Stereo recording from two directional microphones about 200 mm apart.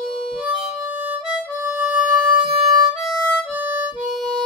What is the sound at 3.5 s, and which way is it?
Harmonica, 10° right (ahead or behind).